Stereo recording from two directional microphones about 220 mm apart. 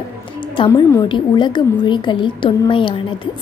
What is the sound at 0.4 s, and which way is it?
A woman's voice, 20° left (ahead or behind).